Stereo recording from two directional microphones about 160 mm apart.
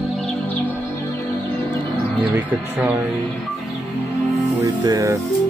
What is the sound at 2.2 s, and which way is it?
Speech, 10° right (ahead or behind).